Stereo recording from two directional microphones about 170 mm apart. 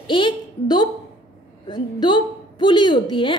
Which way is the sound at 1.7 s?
25° left (ahead or behind).